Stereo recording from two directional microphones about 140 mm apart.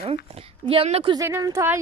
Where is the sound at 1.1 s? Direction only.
20° right (ahead or behind).